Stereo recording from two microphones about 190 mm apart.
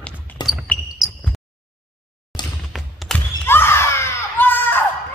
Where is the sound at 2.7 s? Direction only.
Centre (ahead or behind).